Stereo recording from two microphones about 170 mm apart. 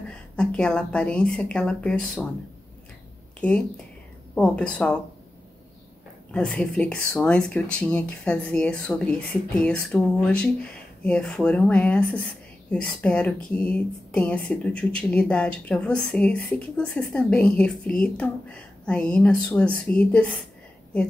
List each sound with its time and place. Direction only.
0.4 s speech: 5° left (ahead or behind)
3.3 s speech: 5° left (ahead or behind)
6.3 s speech: 5° left (ahead or behind)